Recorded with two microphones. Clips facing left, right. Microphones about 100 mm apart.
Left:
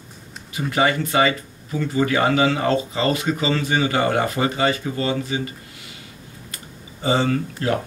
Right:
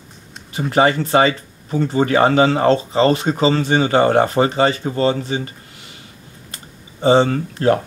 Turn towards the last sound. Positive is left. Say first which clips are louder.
# right 5 dB
turn(degrees=-35)  # may be behind; listen again after turning